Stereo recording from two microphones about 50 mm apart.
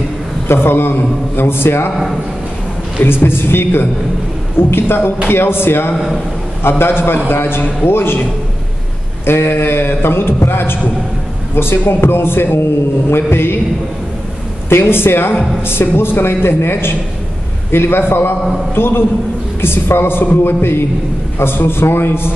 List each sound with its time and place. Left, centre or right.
0.5 s a man's voice: left
3.0 s a man's voice: left
5.9 s a man's voice: centre
6.8 s a man's voice: left
9.2 s a man's voice: left
14.7 s a man's voice: left